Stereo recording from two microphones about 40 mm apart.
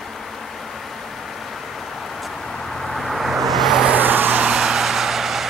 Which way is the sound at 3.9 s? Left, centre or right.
Right.